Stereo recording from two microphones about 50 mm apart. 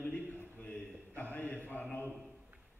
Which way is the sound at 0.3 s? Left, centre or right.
Left.